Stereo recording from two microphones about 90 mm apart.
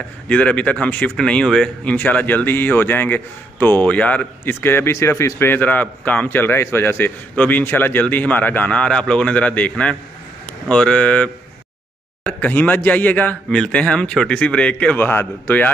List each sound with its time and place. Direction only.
0.3 s a man's voice: 15° left (ahead or behind)
2.0 s speech: 20° left (ahead or behind)
4.6 s a man's voice: 25° left (ahead or behind)